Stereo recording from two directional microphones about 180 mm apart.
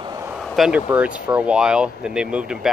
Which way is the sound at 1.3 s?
5° right (ahead or behind).